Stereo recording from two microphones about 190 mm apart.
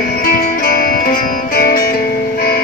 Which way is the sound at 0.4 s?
50° left (ahead or behind).